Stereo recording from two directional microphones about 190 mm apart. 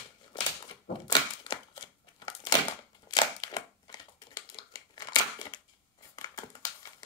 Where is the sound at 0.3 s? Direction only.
25° left (ahead or behind).